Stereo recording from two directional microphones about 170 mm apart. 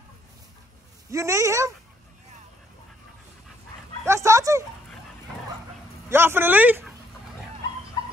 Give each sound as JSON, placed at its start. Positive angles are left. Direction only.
{"t": 1.1, "sound": "speech", "side_deg": -20}
{"t": 4.0, "sound": "speech", "side_deg": -15}
{"t": 6.0, "sound": "speech", "side_deg": -15}